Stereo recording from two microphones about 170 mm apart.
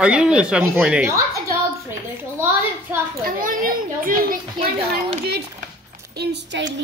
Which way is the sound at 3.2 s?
55° right (ahead or behind).